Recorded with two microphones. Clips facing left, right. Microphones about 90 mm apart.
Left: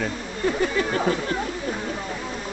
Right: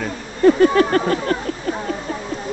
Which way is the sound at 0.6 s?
60° right (ahead or behind).